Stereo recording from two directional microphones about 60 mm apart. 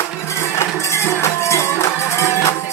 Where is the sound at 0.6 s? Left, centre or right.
Left.